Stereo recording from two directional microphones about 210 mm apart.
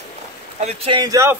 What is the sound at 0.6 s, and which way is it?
Speech, 30° right (ahead or behind).